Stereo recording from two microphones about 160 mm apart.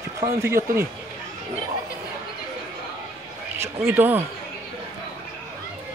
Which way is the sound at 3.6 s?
15° right (ahead or behind).